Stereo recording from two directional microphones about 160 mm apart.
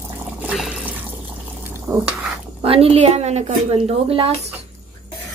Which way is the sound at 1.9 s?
15° right (ahead or behind).